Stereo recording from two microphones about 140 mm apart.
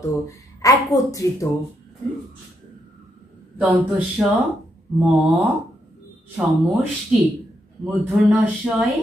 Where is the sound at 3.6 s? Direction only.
10° right (ahead or behind).